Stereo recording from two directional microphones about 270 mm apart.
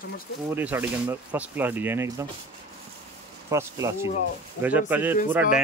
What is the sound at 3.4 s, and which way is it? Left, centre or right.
Speech, centre.